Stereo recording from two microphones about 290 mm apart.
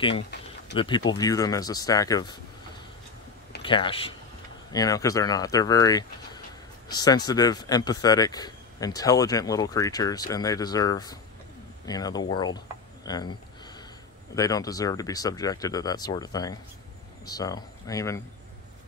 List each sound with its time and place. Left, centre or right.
0.7 s speech: centre
3.6 s speech: centre
14.3 s speech: centre